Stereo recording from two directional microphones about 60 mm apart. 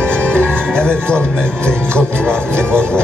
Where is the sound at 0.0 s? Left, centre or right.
Centre.